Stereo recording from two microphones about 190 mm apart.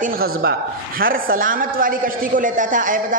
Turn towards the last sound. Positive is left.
turn(degrees=-45)  # may be behind; listen again after turning